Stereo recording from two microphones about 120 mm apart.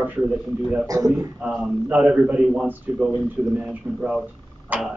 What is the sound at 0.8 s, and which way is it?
Speech, 30° right (ahead or behind).